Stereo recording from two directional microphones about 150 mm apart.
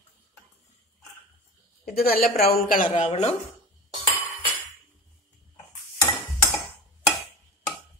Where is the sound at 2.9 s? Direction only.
45° left (ahead or behind).